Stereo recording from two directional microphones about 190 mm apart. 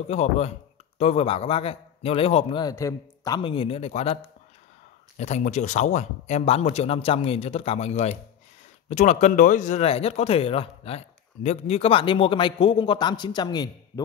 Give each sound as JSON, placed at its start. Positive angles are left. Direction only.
{"t": 0.1, "sound": "speech", "side_deg": 35}